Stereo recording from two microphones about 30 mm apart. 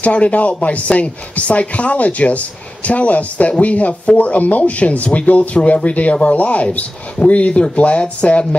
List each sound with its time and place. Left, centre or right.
0.0 s speech: left
8.2 s speech: left